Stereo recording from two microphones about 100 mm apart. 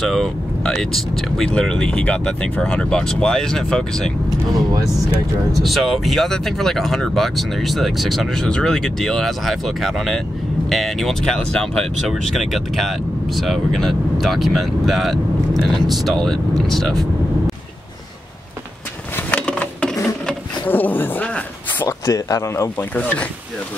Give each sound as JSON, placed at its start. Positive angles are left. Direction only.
{"t": 0.0, "sound": "speech", "side_deg": 5}
{"t": 5.6, "sound": "speech", "side_deg": 0}
{"t": 19.1, "sound": "a sound", "side_deg": 10}
{"t": 21.8, "sound": "speech", "side_deg": 35}
{"t": 22.8, "sound": "speech", "side_deg": 15}